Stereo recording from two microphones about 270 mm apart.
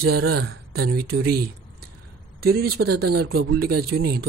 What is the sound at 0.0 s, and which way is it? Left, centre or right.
Speech, right.